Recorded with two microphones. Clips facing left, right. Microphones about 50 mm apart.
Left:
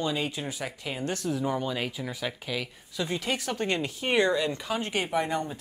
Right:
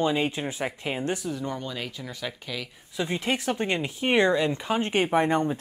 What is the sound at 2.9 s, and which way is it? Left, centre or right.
Speech, right.